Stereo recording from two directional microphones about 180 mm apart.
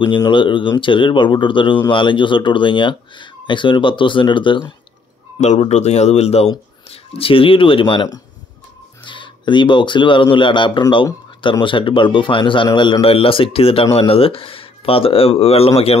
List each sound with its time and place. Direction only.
0.0 s speech: 25° left (ahead or behind)
5.4 s speech: 40° left (ahead or behind)